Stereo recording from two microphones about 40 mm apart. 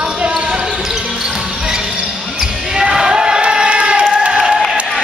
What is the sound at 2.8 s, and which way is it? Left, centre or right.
Crowd, centre.